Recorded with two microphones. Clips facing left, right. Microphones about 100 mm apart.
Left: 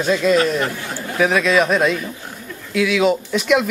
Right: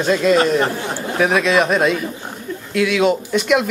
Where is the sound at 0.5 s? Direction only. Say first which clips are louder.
Right 4 dB; 30° right (ahead or behind).